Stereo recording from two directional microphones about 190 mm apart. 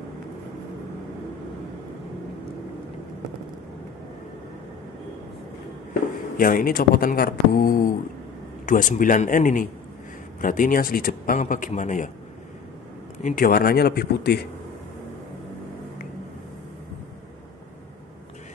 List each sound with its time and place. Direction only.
6.3 s a man's voice: 50° left (ahead or behind)
13.2 s a man's voice: 45° left (ahead or behind)